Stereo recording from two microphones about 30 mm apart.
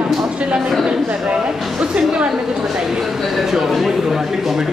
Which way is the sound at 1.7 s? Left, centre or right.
Right.